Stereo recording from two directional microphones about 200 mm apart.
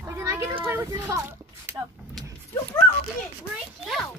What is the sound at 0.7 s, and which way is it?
Speech, 15° right (ahead or behind).